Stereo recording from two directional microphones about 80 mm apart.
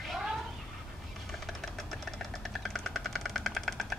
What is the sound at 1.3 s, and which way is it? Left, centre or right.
Engine, centre.